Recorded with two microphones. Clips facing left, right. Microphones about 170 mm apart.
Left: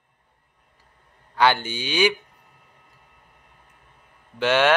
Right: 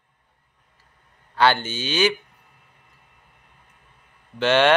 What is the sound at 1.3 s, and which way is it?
Speech, 15° left (ahead or behind).